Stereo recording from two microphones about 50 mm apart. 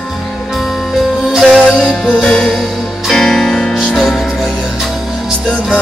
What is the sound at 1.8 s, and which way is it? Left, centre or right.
Music, centre.